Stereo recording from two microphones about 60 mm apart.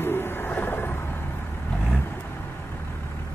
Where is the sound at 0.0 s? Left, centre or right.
Left.